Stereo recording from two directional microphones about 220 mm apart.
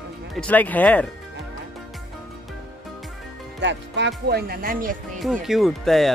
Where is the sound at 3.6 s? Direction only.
55° right (ahead or behind).